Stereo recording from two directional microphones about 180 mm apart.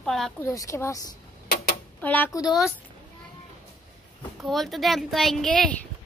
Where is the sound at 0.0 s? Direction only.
Centre (ahead or behind).